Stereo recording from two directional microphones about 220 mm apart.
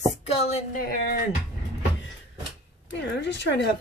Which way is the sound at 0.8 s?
45° left (ahead or behind).